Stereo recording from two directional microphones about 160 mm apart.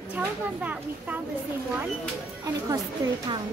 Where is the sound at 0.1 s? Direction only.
10° right (ahead or behind).